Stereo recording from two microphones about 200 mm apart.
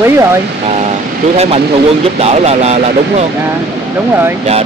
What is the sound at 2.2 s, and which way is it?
Speech, 30° right (ahead or behind).